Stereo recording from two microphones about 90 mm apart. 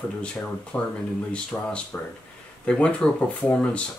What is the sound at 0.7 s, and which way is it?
Speech, 15° left (ahead or behind).